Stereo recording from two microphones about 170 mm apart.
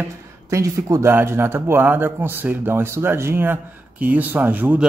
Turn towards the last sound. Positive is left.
turn(degrees=-10)  # may be behind; listen again after turning